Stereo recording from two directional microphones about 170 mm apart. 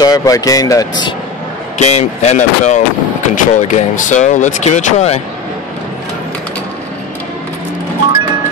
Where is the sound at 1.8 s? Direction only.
40° left (ahead or behind).